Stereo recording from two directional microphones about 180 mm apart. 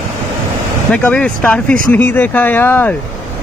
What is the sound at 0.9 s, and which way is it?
Speech, 10° left (ahead or behind).